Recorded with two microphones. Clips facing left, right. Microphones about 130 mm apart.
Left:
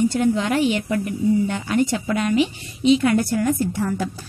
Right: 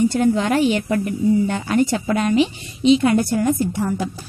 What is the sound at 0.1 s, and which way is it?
A woman's voice, 40° right (ahead or behind).